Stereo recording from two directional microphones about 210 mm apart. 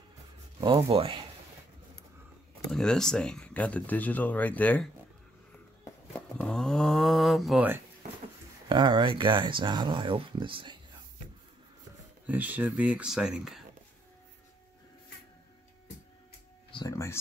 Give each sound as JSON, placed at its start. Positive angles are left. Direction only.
{"t": 0.6, "sound": "speech", "side_deg": -25}
{"t": 2.7, "sound": "speech", "side_deg": 5}
{"t": 5.9, "sound": "a sound", "side_deg": 5}
{"t": 6.4, "sound": "speech", "side_deg": 5}
{"t": 8.6, "sound": "speech", "side_deg": -20}
{"t": 12.3, "sound": "speech", "side_deg": -10}
{"t": 16.7, "sound": "speech", "side_deg": 15}